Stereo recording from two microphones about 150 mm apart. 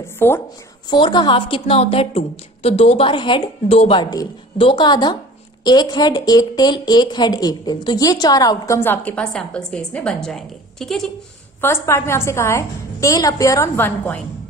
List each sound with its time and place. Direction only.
0.2 s speech: 15° left (ahead or behind)
0.8 s a woman's voice: 30° left (ahead or behind)
4.0 s a woman's voice: 30° left (ahead or behind); by 11.1 s centre (ahead or behind)
11.6 s a woman's voice: 15° left (ahead or behind)